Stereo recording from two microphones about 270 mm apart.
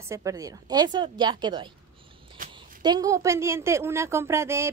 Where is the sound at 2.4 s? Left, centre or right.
Right.